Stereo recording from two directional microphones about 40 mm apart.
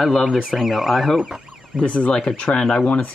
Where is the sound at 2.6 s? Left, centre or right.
Centre.